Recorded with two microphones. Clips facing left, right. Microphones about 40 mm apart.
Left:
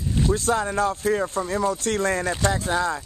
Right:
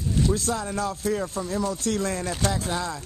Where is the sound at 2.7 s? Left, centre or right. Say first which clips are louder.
Left 6 dB; left.